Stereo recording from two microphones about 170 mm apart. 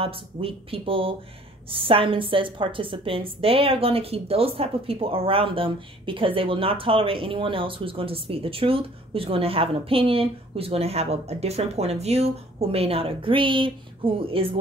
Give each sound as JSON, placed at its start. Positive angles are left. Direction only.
{"t": 0.0, "sound": "a woman's voice", "side_deg": -35}